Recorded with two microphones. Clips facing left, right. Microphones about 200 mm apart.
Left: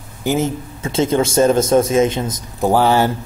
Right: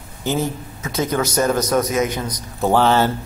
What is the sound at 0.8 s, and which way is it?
A man's voice, 25° left (ahead or behind).